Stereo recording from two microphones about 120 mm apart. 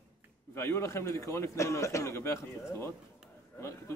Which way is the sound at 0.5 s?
20° left (ahead or behind).